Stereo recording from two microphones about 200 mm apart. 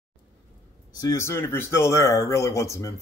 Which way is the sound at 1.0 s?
15° left (ahead or behind).